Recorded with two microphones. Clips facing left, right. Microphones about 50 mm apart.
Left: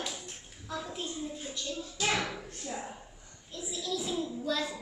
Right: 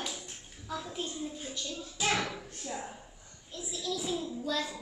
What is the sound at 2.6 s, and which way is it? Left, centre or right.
Drawer open or close, centre.